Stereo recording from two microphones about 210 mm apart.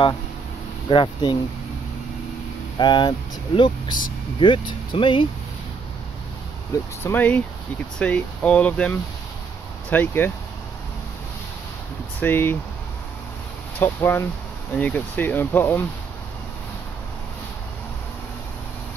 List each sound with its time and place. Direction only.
0.8 s speech: 25° left (ahead or behind)
2.8 s speech: 20° left (ahead or behind)
7.0 s speech: 10° left (ahead or behind)
12.2 s speech: 10° left (ahead or behind)
13.7 s speech: 10° left (ahead or behind)